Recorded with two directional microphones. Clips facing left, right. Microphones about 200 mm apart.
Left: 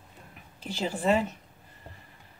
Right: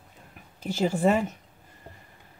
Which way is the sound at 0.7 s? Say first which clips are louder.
Right 3 dB; 45° right (ahead or behind).